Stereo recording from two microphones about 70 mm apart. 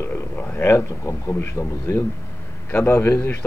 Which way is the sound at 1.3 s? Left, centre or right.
Left.